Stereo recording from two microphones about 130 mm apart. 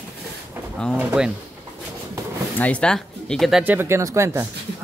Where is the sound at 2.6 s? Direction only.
10° left (ahead or behind).